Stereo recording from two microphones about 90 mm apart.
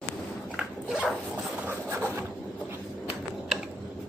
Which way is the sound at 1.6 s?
25° right (ahead or behind).